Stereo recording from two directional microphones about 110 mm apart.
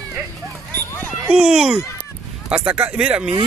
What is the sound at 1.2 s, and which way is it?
Speech, 10° right (ahead or behind).